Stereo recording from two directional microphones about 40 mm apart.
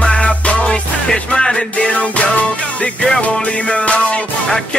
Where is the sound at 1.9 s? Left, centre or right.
Left.